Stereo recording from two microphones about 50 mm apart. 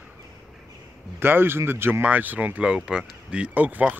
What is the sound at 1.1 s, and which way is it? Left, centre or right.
Speech, right.